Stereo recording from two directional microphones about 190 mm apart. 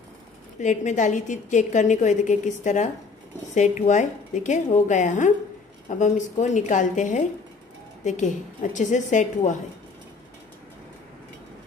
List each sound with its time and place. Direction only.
0.6 s a woman's voice: 40° left (ahead or behind)